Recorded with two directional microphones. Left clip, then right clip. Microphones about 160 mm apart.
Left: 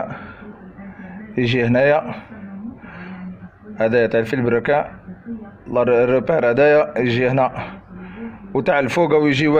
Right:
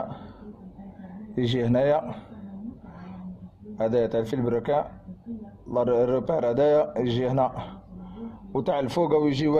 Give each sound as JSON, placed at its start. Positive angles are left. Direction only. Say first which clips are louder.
{"t": 1.3, "sound": "a man's voice", "louder": "left 7 dB", "side_deg": -15}
{"t": 3.7, "sound": "a man's voice", "louder": "left 8 dB", "side_deg": -10}